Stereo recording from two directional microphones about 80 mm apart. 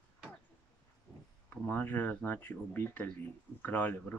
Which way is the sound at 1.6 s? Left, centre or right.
Left.